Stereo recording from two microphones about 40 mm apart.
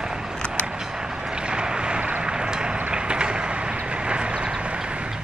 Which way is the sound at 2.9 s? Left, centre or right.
Right.